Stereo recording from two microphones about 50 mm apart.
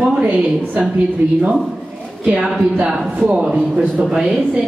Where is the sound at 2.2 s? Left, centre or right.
Right.